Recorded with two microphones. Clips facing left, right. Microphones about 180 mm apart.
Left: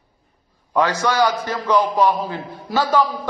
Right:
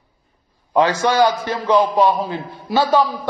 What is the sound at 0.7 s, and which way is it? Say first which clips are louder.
A man's voice: right 3 dB; 25° right (ahead or behind).